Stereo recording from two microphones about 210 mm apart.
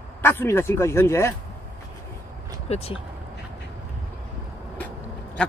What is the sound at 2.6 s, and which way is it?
Speech, 30° left (ahead or behind).